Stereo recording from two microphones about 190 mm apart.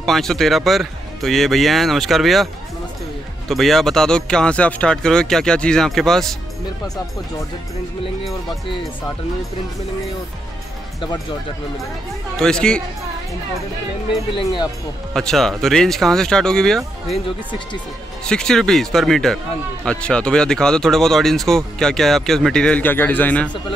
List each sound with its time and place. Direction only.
0.0 s speech: centre (ahead or behind)
12.4 s speech: 5° left (ahead or behind)
14.3 s speech: 25° left (ahead or behind)
15.1 s speech: centre (ahead or behind)
18.2 s speech: 5° left (ahead or behind)